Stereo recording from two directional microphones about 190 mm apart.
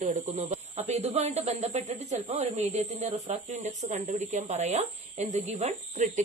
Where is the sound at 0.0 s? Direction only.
35° right (ahead or behind).